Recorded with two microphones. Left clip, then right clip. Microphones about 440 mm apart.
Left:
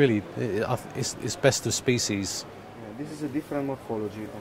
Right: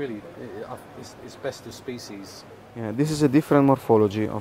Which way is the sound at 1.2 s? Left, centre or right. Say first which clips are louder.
Left 9 dB; left.